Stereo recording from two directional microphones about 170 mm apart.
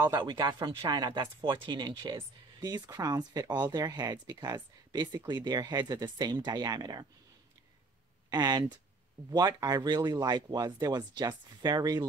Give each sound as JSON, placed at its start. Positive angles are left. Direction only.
{"t": 0.2, "sound": "speech", "side_deg": -25}
{"t": 8.3, "sound": "speech", "side_deg": -25}